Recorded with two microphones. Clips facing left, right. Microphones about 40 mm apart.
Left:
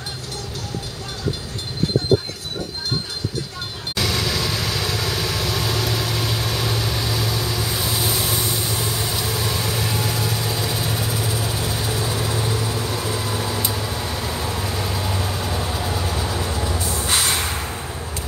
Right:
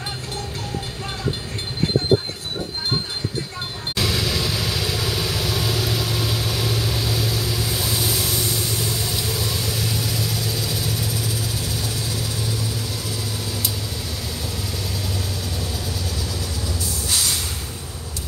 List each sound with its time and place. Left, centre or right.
3.9 s vehicle: centre; by 17.5 s left